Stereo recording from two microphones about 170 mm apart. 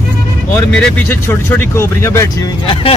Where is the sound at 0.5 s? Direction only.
10° left (ahead or behind).